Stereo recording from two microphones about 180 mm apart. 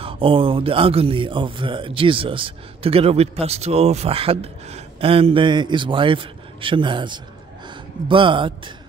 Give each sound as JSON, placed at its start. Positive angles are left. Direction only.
{"t": 0.0, "sound": "a man's voice", "side_deg": -30}